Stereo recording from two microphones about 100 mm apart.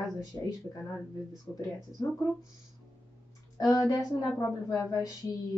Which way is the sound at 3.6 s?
35° left (ahead or behind).